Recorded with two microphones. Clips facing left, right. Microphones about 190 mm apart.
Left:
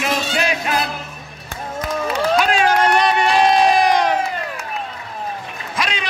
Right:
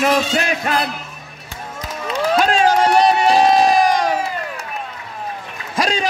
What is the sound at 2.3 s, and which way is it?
Run, 40° right (ahead or behind).